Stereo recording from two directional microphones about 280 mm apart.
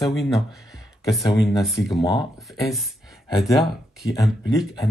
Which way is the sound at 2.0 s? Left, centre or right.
Centre.